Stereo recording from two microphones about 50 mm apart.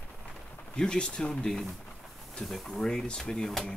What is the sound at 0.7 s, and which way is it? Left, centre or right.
Speech, centre.